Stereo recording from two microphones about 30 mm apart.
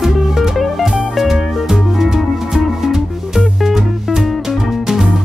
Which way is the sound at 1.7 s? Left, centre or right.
Centre.